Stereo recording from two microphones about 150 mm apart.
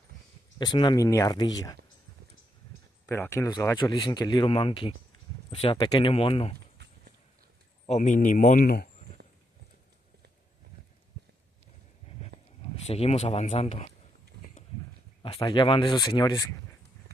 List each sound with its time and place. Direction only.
0.6 s speech: 30° left (ahead or behind)
3.1 s speech: 20° left (ahead or behind); by 6.5 s 40° left (ahead or behind)
6.8 s horse: 90° right
7.9 s speech: 55° left (ahead or behind)
12.8 s speech: 45° left (ahead or behind)
15.2 s speech: 35° left (ahead or behind)